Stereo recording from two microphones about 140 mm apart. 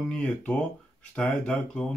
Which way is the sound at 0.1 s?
10° left (ahead or behind).